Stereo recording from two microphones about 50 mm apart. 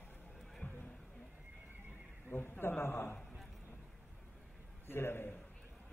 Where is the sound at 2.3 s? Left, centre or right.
Left.